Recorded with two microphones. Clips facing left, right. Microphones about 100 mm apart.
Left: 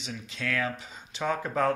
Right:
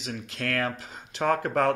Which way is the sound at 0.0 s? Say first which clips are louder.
Right 3 dB; 75° right (ahead or behind).